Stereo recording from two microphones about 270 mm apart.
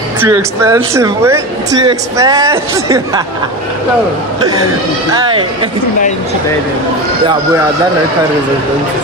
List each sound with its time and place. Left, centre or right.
0.2 s speech: centre
5.1 s speech: centre